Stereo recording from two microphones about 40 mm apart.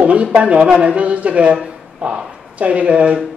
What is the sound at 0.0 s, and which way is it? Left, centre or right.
A man's voice, right.